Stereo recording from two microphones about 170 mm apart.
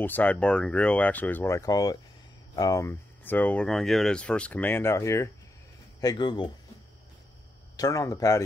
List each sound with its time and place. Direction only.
0.0 s speech: 10° left (ahead or behind); by 6.5 s 25° left (ahead or behind)
7.7 s speech: 20° left (ahead or behind)